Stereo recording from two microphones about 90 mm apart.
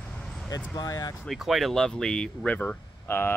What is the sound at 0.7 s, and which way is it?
Speech, 40° left (ahead or behind).